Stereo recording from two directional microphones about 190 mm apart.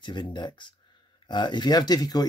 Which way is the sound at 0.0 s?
25° left (ahead or behind).